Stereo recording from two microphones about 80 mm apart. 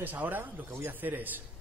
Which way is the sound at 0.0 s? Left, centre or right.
Right.